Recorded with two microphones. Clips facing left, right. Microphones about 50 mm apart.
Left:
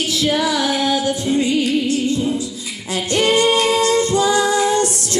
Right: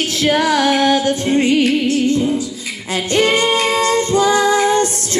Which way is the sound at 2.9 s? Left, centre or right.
Right.